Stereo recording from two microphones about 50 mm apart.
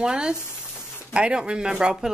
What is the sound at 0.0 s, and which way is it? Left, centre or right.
Speech, centre.